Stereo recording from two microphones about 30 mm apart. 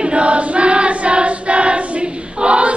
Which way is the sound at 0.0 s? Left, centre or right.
Right.